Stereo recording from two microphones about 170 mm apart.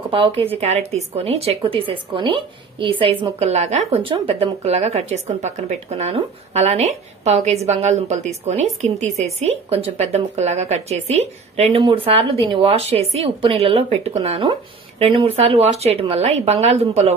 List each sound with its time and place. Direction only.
0.1 s a woman's voice: 30° right (ahead or behind)